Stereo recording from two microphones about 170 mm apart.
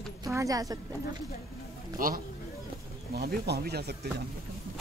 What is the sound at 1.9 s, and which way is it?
Speech, 55° right (ahead or behind).